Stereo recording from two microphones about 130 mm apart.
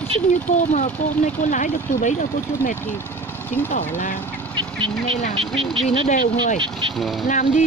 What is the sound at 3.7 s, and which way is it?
Speech, 70° left (ahead or behind).